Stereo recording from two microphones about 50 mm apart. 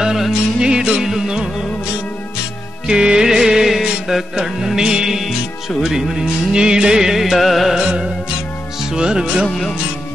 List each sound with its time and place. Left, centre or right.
0.0 s music: centre
7.7 s music: centre